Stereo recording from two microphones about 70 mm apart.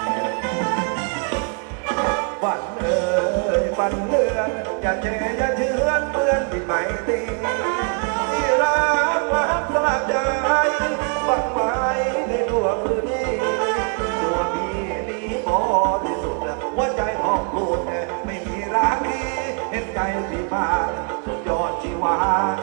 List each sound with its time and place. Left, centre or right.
0.1 s music: centre
2.0 s music: centre
15.5 s music: centre
20.5 s music: centre